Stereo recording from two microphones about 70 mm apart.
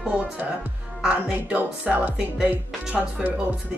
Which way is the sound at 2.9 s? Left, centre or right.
Centre.